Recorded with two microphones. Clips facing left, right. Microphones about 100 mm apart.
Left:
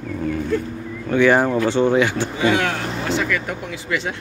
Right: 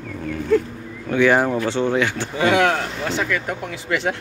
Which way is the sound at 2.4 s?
80° right.